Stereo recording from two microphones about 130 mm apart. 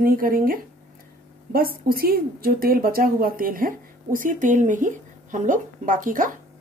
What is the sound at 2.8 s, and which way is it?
Speech, 90° right.